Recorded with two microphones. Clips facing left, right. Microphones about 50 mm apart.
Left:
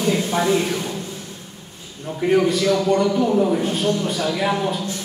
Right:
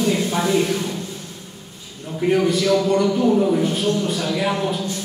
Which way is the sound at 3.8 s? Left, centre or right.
Left.